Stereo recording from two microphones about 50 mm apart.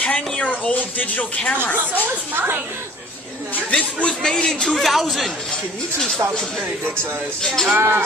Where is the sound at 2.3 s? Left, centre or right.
Right.